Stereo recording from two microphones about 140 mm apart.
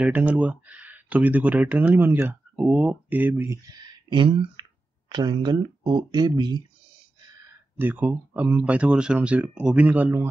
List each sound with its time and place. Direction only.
0.0 s speech: 10° right (ahead or behind)
3.7 s a sound: 30° right (ahead or behind)
5.1 s speech: 30° right (ahead or behind)
7.8 s speech: 15° right (ahead or behind)